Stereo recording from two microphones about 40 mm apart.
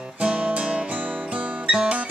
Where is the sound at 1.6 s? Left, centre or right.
Right.